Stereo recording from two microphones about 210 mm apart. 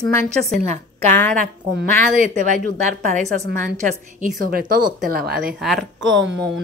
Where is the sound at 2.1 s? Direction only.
40° right (ahead or behind).